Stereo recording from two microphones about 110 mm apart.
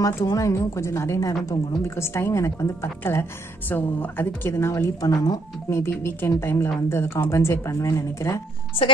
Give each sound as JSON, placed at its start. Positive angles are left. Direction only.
{"t": 0.0, "sound": "a woman's voice", "side_deg": 30}
{"t": 5.7, "sound": "a woman's voice", "side_deg": 20}